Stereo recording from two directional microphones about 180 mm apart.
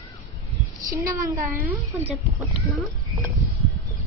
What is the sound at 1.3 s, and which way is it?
Speech, 10° right (ahead or behind).